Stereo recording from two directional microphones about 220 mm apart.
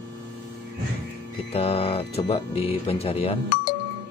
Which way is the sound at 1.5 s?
25° left (ahead or behind).